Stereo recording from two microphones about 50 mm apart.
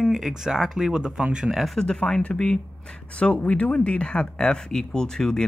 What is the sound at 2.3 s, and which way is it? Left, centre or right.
Speech, centre.